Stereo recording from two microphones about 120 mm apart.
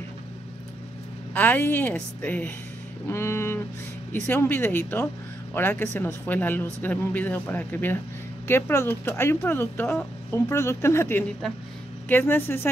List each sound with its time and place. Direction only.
1.3 s speech: 15° left (ahead or behind)